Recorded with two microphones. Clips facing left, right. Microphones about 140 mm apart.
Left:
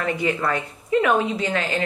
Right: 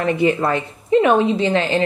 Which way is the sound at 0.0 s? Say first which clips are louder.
Right 6 dB; 25° right (ahead or behind).